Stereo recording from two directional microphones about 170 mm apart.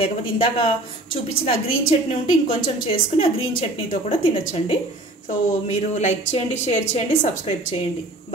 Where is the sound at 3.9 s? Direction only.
35° left (ahead or behind).